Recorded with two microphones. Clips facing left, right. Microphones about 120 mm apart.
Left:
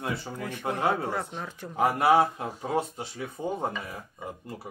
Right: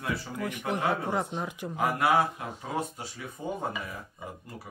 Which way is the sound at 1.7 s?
30° left (ahead or behind).